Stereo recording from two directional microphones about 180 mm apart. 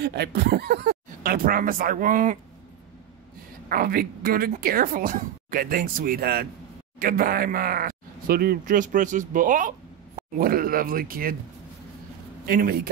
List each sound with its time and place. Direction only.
0.0 s speech: 65° right (ahead or behind); by 2.3 s 45° right (ahead or behind)
3.6 s speech: 55° right (ahead or behind)
12.4 s speech: 55° right (ahead or behind)